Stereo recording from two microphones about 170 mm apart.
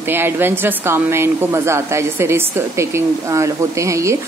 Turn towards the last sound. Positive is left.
turn(degrees=-15)  # may be behind; listen again after turning